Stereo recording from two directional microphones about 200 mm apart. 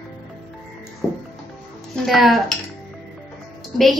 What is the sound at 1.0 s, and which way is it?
Music, 10° left (ahead or behind).